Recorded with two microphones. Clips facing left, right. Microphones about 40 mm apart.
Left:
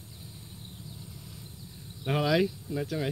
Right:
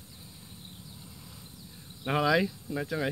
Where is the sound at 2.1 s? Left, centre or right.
Right.